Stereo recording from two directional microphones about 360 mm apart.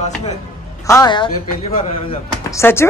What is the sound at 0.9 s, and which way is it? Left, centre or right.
A man's voice, centre.